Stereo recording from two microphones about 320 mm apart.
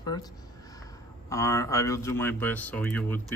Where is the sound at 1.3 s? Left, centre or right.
Centre.